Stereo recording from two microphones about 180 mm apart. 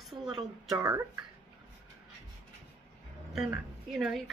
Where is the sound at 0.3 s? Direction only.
20° right (ahead or behind).